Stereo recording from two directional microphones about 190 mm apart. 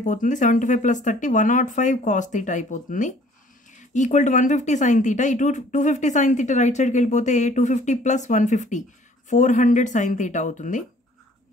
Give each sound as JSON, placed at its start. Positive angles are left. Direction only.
{"t": 0.0, "sound": "speech", "side_deg": 40}